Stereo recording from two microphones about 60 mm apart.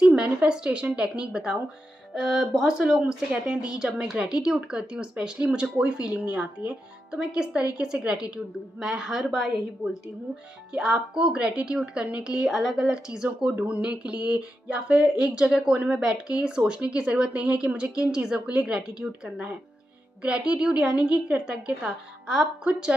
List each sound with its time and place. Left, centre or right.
0.0 s speech: centre
9.3 s a woman's voice: centre
9.8 s speech: centre
12.5 s speech: centre